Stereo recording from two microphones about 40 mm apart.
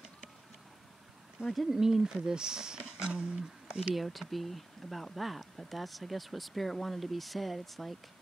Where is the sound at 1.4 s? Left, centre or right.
Centre.